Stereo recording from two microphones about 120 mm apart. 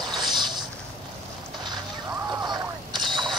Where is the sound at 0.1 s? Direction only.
40° right (ahead or behind).